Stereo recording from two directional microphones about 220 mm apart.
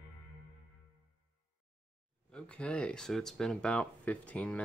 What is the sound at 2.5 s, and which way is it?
Speech, 5° left (ahead or behind).